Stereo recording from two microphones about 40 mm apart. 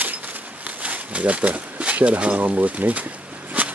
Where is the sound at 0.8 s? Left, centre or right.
Right.